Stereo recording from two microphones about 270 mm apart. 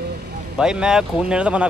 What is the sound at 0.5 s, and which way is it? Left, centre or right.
Speech, centre.